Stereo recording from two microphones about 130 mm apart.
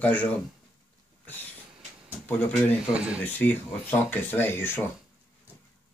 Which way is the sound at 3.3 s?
15° left (ahead or behind).